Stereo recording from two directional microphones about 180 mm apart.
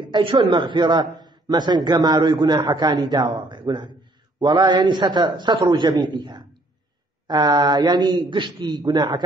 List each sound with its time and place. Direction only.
0.1 s a man's voice: 25° right (ahead or behind)
1.1 s a sound: 25° right (ahead or behind)
2.0 s a man's voice: 25° right (ahead or behind)